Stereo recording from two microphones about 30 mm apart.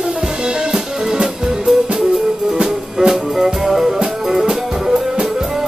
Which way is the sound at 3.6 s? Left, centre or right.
Centre.